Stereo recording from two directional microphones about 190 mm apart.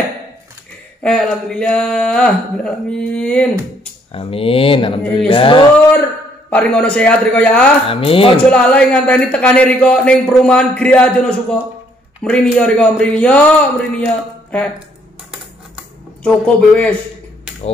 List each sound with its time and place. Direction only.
1.0 s a man's voice: 5° left (ahead or behind)
4.1 s speech: 30° left (ahead or behind)
6.5 s a man's voice: 5° left (ahead or behind)
7.9 s speech: 30° left (ahead or behind)
8.5 s a man's voice: 5° left (ahead or behind)
16.2 s speech: 5° left (ahead or behind)